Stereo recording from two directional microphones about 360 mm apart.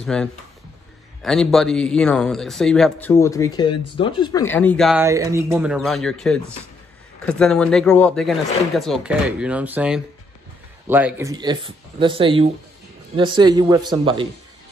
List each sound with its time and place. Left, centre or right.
0.0 s speech: centre